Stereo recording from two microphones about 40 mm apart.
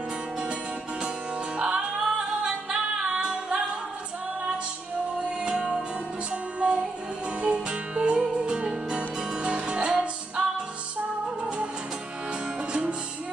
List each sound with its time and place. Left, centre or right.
1.6 s music: right
5.4 s music: right
11.4 s music: right